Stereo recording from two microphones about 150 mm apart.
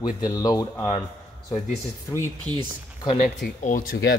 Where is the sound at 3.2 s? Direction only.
65° left (ahead or behind); by 4.2 s 80° left.